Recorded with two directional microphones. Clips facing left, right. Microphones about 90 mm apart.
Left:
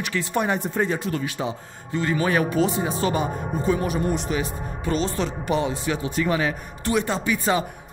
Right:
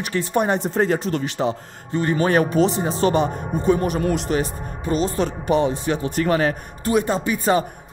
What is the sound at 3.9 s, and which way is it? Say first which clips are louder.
Speech: right 3 dB; 80° right.